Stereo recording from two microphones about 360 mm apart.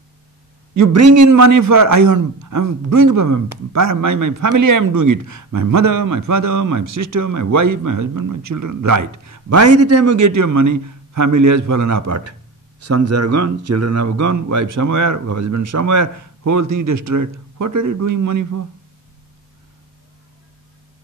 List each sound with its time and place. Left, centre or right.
0.7 s a man's voice: right